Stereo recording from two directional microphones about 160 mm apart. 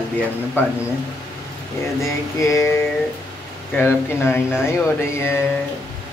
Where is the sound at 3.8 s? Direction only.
15° left (ahead or behind).